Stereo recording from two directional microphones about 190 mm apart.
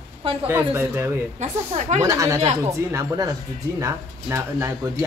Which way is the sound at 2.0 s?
20° right (ahead or behind).